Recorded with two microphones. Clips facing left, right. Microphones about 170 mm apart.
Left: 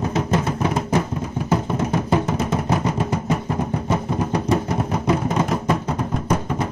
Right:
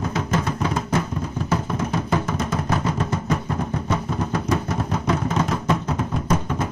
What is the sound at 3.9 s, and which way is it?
Music, 20° left (ahead or behind).